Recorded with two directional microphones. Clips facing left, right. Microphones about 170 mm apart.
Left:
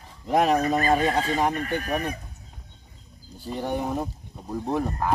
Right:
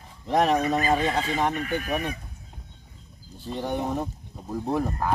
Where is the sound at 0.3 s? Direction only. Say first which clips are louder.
Left 1 dB; 10° left (ahead or behind).